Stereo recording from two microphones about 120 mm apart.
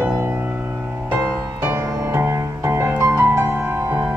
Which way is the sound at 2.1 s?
20° right (ahead or behind).